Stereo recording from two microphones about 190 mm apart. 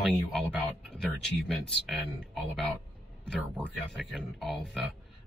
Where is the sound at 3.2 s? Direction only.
5° left (ahead or behind).